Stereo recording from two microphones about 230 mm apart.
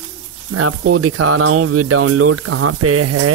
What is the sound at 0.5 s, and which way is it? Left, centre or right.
Speech, right.